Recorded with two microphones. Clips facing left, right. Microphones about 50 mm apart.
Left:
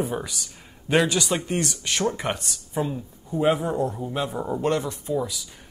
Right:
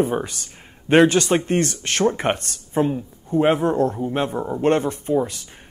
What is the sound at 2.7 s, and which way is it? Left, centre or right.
Speech, right.